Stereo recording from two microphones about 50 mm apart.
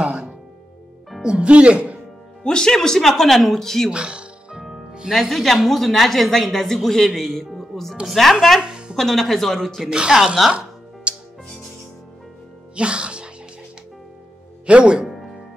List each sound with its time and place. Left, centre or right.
0.0 s music: right
1.2 s speech: centre
2.4 s speech: centre
3.9 s music: centre
5.1 s a woman's voice: centre
8.5 s a sound: centre
8.9 s a woman's voice: centre
9.8 s speech: centre
11.1 s music: right
12.7 s speech: right
14.7 s speech: centre